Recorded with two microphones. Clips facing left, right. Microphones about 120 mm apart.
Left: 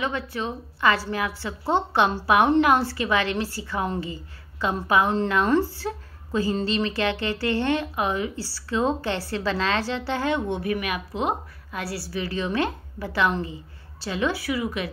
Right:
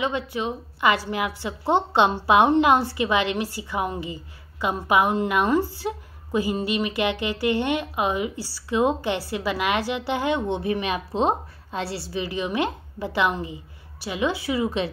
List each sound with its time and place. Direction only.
0.0 s a woman's voice: 15° right (ahead or behind)